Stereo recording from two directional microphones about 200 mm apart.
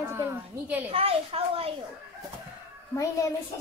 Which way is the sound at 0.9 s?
30° right (ahead or behind).